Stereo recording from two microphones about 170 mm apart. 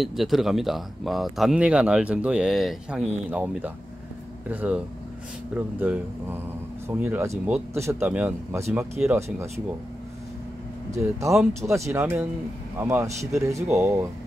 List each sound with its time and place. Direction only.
0.0 s speech: centre (ahead or behind)
10.9 s speech: 15° right (ahead or behind)